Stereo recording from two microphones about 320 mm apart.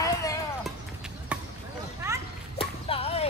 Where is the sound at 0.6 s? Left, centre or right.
Centre.